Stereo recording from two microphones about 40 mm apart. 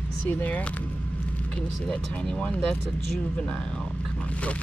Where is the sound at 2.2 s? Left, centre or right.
Left.